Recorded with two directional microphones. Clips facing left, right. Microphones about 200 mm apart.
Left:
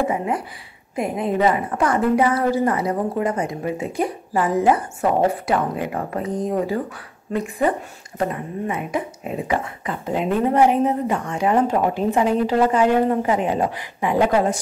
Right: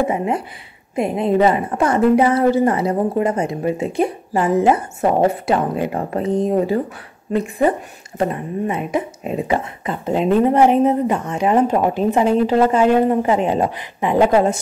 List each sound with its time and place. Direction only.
0.9 s speech: 25° right (ahead or behind)